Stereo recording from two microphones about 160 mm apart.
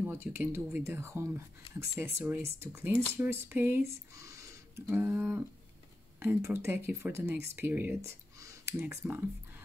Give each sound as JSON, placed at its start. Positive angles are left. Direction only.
{"t": 0.0, "sound": "speech", "side_deg": -15}